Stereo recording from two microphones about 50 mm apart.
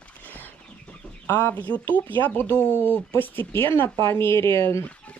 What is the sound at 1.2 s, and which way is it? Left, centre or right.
Speech, left.